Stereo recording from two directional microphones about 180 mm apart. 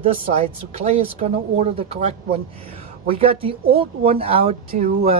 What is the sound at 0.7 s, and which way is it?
Speech, 35° right (ahead or behind).